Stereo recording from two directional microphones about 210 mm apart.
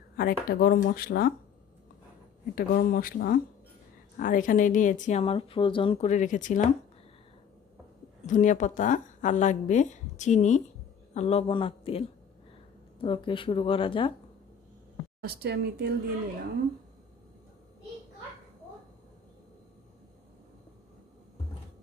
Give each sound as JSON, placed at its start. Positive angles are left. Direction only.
{"t": 0.2, "sound": "speech", "side_deg": 45}
{"t": 2.5, "sound": "speech", "side_deg": 45}
{"t": 8.3, "sound": "speech", "side_deg": 35}
{"t": 13.0, "sound": "speech", "side_deg": 25}
{"t": 15.2, "sound": "a woman's voice", "side_deg": -50}